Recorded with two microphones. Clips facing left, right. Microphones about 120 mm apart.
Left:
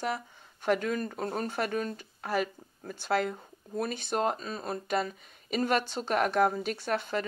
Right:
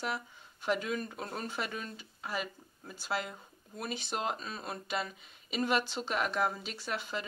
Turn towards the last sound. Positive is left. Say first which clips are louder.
# left 7 dB
turn(degrees=50)  # may be behind; listen again after turning